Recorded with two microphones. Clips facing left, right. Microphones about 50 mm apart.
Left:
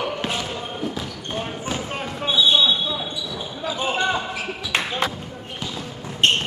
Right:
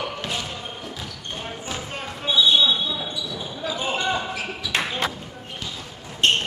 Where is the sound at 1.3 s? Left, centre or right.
Centre.